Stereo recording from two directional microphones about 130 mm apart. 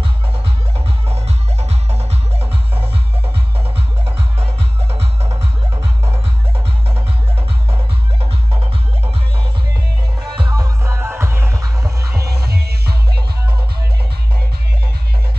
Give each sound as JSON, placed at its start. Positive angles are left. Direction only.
{"t": 0.7, "sound": "music", "side_deg": -50}
{"t": 4.9, "sound": "music", "side_deg": -50}
{"t": 8.2, "sound": "music", "side_deg": -50}
{"t": 10.2, "sound": "music", "side_deg": -35}